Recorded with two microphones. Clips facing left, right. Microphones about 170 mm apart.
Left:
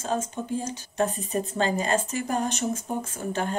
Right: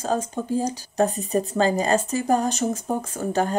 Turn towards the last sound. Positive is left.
turn(degrees=-40)  # may be behind; listen again after turning